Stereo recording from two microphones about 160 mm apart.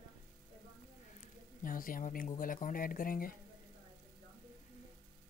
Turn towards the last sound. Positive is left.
turn(degrees=65)  # may be behind; listen again after turning